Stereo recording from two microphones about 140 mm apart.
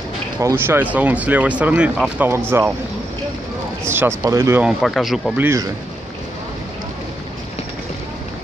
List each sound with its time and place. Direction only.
0.4 s speech: 20° right (ahead or behind)
3.8 s a sound: 15° right (ahead or behind)
4.2 s speech: 20° right (ahead or behind)
4.6 s speech: centre (ahead or behind)
5.4 s speech: 20° right (ahead or behind)